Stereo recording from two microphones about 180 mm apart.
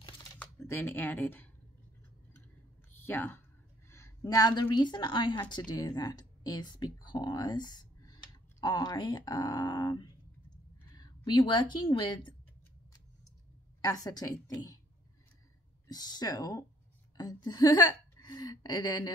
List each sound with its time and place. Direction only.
0.4 s speech: 10° left (ahead or behind)
3.0 s a woman's voice: 10° left (ahead or behind)
13.7 s speech: 20° left (ahead or behind)
15.9 s speech: 20° left (ahead or behind)